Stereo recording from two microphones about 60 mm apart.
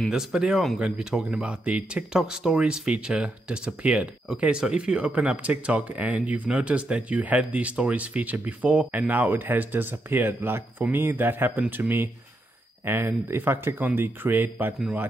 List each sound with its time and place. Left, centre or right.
0.1 s speech: centre; by 11.6 s right
12.8 s speech: right